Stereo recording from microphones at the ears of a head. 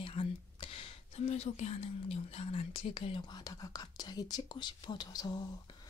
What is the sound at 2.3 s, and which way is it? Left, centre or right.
Speech, left.